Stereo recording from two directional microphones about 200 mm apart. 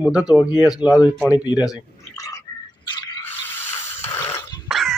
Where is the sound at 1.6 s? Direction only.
15° left (ahead or behind).